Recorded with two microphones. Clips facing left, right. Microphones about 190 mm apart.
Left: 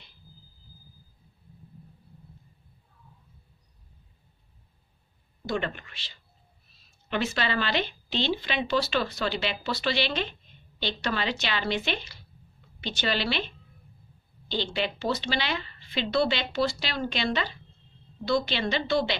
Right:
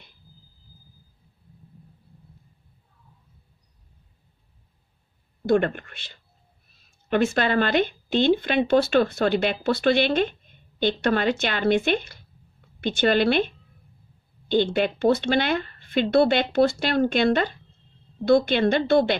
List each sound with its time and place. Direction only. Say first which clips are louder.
5.5 s speech: right 10 dB; 55° right (ahead or behind)
14.5 s speech: right 9 dB; 50° right (ahead or behind)